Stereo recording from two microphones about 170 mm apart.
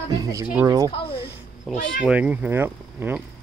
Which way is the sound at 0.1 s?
20° right (ahead or behind).